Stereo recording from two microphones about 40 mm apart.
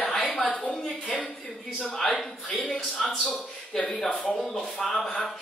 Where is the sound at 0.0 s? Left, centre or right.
Left.